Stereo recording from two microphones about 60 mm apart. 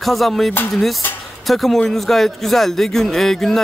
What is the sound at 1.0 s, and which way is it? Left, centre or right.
Speech, left.